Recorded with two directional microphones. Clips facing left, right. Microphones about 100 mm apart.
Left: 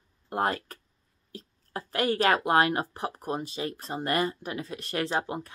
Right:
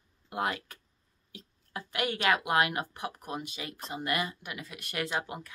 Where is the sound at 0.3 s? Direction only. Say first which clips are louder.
Left 5 dB; 40° left (ahead or behind).